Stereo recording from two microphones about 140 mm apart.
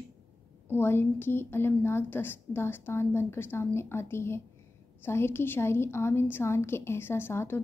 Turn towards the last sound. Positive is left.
turn(degrees=15)  # may be behind; listen again after turning